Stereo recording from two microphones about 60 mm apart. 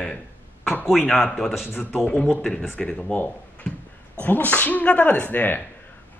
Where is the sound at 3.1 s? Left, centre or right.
Left.